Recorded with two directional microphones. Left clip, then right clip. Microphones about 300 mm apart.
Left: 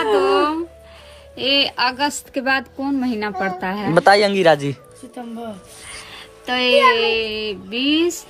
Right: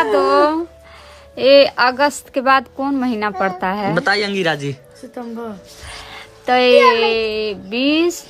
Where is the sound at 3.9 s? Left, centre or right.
Centre.